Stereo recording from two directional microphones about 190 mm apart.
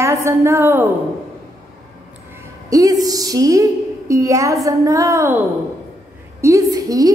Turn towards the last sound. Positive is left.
turn(degrees=-20)  # may be behind; listen again after turning